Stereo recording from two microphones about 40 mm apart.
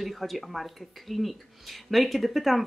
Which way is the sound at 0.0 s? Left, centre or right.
Centre.